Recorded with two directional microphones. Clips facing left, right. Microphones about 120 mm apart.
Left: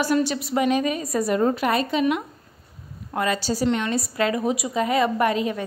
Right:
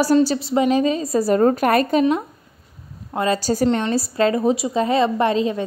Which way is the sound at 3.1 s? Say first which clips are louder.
Right 4 dB; 25° right (ahead or behind).